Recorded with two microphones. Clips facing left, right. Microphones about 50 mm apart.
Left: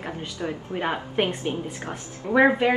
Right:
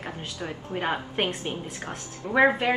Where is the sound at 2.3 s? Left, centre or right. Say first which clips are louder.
Left 2 dB; centre.